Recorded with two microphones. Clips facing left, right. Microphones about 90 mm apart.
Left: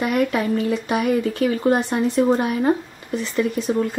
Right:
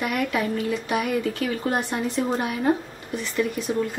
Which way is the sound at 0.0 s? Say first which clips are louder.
Left 4 dB; 30° left (ahead or behind).